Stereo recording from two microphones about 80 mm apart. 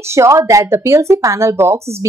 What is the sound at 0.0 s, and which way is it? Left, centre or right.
Speech, right.